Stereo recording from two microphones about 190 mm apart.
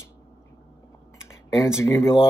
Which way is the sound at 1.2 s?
15° left (ahead or behind).